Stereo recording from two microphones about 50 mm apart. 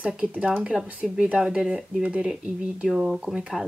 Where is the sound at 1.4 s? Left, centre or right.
Centre.